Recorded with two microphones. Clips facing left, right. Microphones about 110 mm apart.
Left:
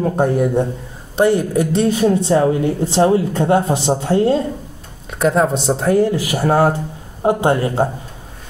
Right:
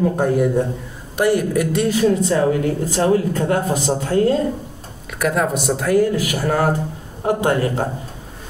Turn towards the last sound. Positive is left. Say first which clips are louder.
# left 3 dB
turn(degrees=25)  # may be behind; listen again after turning